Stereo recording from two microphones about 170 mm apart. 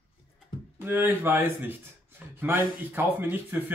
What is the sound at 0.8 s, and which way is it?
Speech, 15° right (ahead or behind).